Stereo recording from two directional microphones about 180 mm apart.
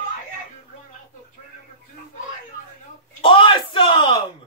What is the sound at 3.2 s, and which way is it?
Bellow, 30° left (ahead or behind).